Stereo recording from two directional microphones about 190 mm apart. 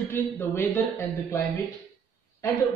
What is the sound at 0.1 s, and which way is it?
Speech, 10° left (ahead or behind).